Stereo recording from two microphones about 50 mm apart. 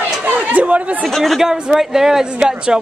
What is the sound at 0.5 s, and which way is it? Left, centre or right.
Speech, right.